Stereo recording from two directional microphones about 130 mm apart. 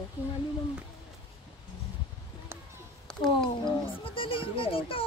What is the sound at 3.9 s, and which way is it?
Speech, 40° left (ahead or behind).